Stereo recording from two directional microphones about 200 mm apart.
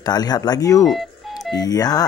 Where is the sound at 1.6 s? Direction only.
20° left (ahead or behind).